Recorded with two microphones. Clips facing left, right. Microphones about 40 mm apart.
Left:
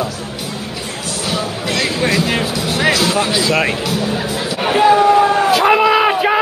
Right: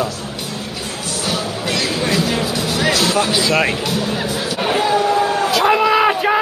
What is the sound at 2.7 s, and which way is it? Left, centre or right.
Music, left.